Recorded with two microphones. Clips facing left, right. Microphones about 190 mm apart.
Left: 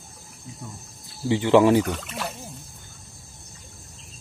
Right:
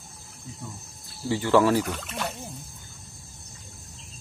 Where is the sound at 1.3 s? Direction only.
20° left (ahead or behind).